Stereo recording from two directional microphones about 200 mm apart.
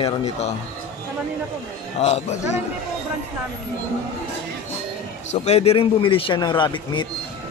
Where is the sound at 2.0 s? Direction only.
35° left (ahead or behind).